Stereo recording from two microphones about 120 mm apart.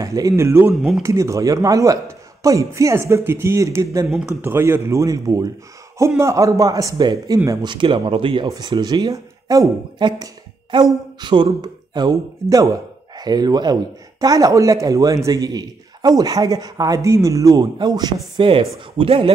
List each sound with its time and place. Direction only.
0.0 s speech: 30° right (ahead or behind)
7.6 s a man's voice: 40° right (ahead or behind)
18.5 s speech: 50° right (ahead or behind)